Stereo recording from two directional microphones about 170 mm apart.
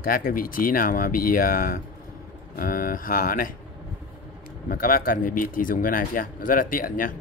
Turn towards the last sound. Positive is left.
turn(degrees=55)  # may be behind; listen again after turning